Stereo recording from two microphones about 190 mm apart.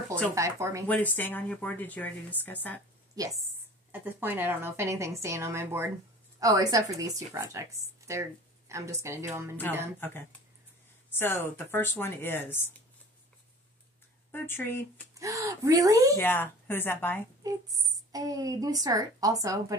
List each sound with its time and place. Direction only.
0.3 s speech: 15° right (ahead or behind)
0.8 s a woman's voice: 10° left (ahead or behind)
3.9 s speech: 10° right (ahead or behind)
9.9 s a woman's voice: 10° left (ahead or behind)
14.3 s a woman's voice: 10° left (ahead or behind)
15.1 s speech: 15° right (ahead or behind)
16.2 s a woman's voice: 10° left (ahead or behind)
17.4 s a woman's voice: 20° right (ahead or behind)